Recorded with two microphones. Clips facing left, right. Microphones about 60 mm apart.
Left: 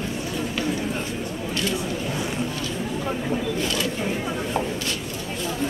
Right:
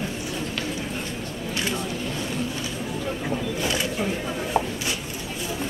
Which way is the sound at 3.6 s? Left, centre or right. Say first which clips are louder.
Left 1 dB; centre.